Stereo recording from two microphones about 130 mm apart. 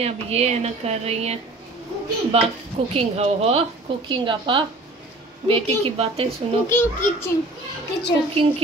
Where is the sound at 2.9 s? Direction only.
55° right (ahead or behind).